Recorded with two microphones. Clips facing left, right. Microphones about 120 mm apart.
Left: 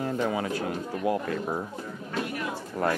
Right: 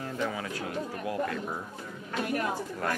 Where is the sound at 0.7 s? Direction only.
40° left (ahead or behind).